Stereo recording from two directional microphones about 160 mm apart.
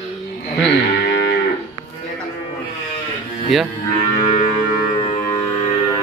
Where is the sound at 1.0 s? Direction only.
90° left.